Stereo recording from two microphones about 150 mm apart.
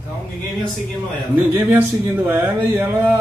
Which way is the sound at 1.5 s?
10° right (ahead or behind).